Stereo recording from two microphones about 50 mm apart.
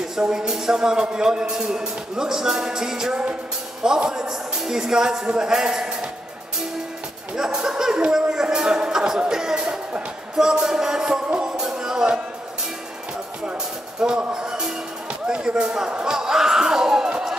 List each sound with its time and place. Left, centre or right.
0.3 s speech: centre
7.3 s speech: centre
8.1 s a sound: centre
9.2 s speech: centre
11.2 s music: centre
13.9 s speech: centre